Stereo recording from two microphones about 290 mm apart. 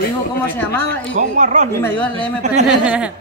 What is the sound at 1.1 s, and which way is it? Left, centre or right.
Speech, right.